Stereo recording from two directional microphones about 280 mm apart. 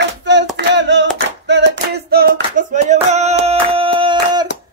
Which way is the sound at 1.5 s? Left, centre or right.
Right.